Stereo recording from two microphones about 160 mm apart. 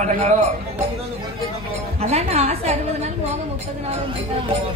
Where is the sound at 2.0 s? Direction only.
40° right (ahead or behind).